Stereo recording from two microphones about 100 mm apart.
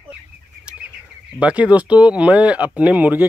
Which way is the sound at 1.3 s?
10° right (ahead or behind).